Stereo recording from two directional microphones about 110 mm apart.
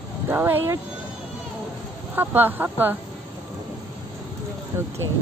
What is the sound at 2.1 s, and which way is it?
Speech, 20° right (ahead or behind).